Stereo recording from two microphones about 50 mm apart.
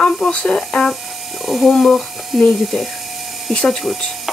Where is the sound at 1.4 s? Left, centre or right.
Centre.